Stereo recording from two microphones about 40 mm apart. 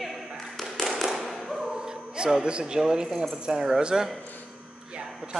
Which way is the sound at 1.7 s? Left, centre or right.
Centre.